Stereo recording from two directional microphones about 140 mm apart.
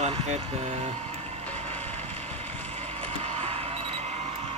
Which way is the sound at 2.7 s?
50° right (ahead or behind).